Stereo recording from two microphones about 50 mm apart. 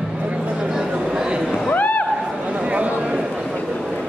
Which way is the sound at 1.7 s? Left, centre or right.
Left.